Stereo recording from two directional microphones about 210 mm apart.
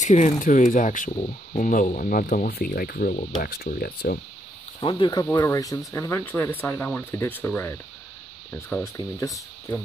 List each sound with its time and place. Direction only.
0.0 s speech: 35° left (ahead or behind)
1.1 s speech: 25° left (ahead or behind)
1.7 s speech: 40° left (ahead or behind)
4.7 s speech: 20° left (ahead or behind)
5.2 s speech: 10° left (ahead or behind)